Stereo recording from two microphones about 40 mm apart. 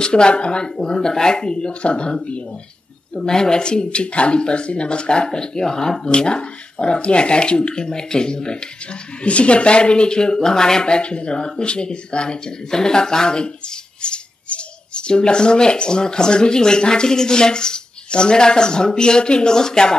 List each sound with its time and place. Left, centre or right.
0.0 s speech: left
3.2 s speech: centre